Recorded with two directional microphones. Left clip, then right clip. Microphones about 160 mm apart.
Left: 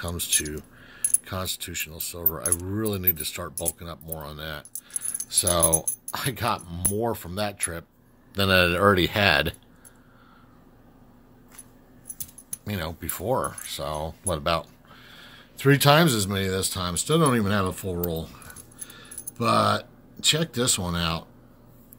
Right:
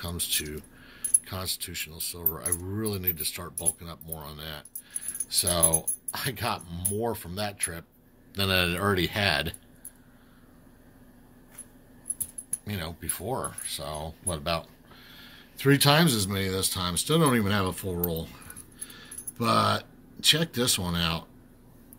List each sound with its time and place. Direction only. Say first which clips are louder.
0.0 s speech: left 3 dB; 45° left (ahead or behind)
12.6 s speech: left 4 dB; 50° left (ahead or behind); by 21.3 s 30° left (ahead or behind)